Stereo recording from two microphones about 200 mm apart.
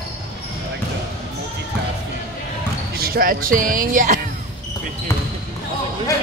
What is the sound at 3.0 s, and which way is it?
Speech, 45° right (ahead or behind).